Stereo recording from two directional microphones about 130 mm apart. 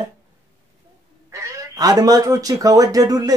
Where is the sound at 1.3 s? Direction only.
25° right (ahead or behind).